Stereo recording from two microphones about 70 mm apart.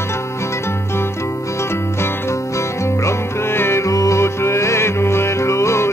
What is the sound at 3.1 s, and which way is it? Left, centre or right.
Music, left.